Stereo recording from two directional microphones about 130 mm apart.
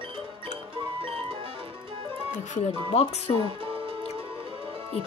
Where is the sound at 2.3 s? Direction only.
70° left (ahead or behind).